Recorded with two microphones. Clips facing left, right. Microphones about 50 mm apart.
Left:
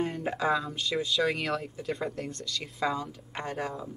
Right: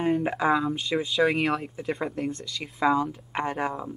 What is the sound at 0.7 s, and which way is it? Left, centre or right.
Speech, centre.